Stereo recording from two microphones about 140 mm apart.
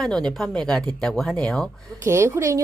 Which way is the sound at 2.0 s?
20° right (ahead or behind).